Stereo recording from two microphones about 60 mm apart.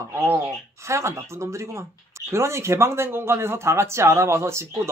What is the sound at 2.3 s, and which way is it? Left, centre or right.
Speech, right.